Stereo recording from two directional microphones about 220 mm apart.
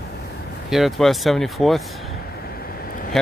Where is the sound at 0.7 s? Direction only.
Centre (ahead or behind).